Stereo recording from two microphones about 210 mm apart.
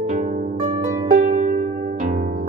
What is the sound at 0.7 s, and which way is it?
Music, 30° right (ahead or behind).